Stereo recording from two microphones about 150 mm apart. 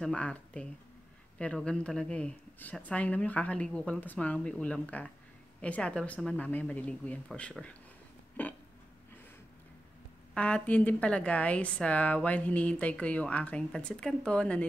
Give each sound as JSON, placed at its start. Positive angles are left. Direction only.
{"t": 0.0, "sound": "a woman's voice", "side_deg": 5}
{"t": 8.4, "sound": "burping", "side_deg": 10}
{"t": 10.3, "sound": "a woman's voice", "side_deg": 10}